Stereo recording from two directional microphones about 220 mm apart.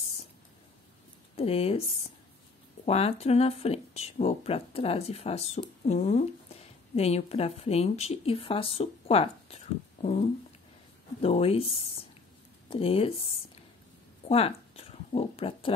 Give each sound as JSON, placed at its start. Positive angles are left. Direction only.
{"t": 1.3, "sound": "speech", "side_deg": 25}
{"t": 11.1, "sound": "speech", "side_deg": 25}
{"t": 14.2, "sound": "speech", "side_deg": 25}